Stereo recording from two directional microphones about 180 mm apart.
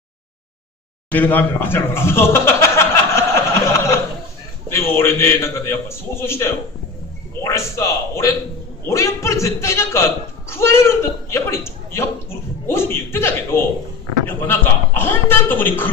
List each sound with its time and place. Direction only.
1.1 s chuckle: 10° left (ahead or behind)
4.6 s a man's voice: 15° left (ahead or behind)